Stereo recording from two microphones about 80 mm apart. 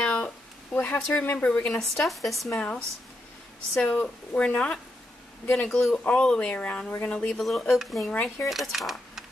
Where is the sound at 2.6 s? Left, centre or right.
Centre.